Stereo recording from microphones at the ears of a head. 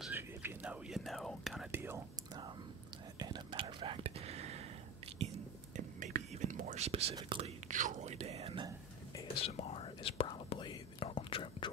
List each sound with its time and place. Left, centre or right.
0.9 s whispering: centre
3.2 s whispering: right
9.3 s whispering: left